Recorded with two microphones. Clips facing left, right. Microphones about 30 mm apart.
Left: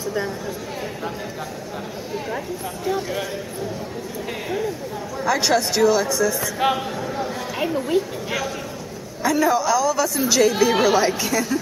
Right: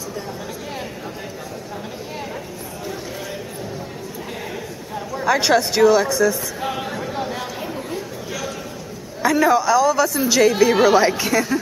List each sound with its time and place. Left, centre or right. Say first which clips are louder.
5.2 s a woman's voice: right 3 dB; centre
6.6 s speech: left 7 dB; left
7.0 s a sound: right 1 dB; centre
7.6 s chatter: left 7 dB; left
9.2 s a woman's voice: right 3 dB; centre
11.0 s a woman's voice: right 3 dB; centre